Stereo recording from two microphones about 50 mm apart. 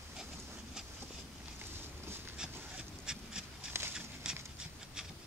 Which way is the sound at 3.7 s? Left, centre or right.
Right.